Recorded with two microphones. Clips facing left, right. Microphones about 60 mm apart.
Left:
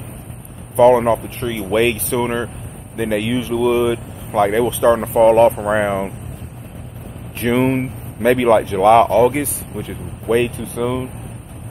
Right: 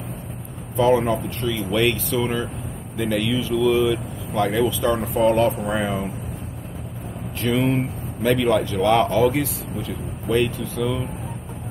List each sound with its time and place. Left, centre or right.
0.7 s speech: left
7.3 s speech: left